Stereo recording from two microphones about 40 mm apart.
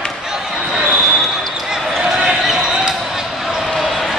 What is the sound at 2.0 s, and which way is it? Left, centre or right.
Basketball bounce, centre.